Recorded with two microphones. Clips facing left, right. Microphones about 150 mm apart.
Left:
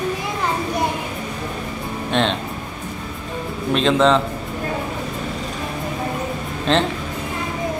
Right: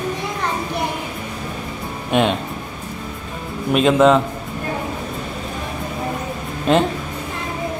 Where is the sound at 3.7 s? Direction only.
10° right (ahead or behind).